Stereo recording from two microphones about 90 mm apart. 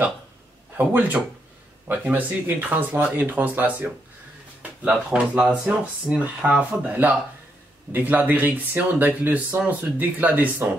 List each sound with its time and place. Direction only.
0.7 s speech: 20° right (ahead or behind)